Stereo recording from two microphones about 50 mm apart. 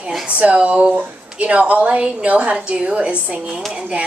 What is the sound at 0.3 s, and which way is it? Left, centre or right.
A woman's voice, right.